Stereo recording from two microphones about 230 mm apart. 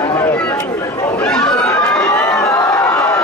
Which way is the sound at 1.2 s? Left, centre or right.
Centre.